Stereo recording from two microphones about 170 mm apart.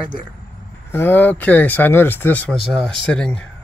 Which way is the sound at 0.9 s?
10° left (ahead or behind).